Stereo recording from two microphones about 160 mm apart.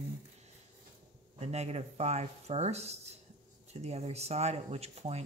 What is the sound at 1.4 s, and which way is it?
Speech, 45° right (ahead or behind).